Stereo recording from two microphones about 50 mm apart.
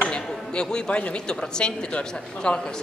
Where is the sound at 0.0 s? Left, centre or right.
Centre.